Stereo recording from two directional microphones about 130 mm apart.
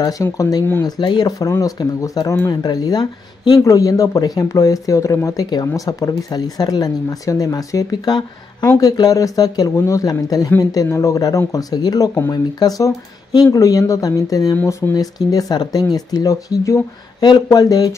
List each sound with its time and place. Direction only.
0.0 s speech: 30° left (ahead or behind)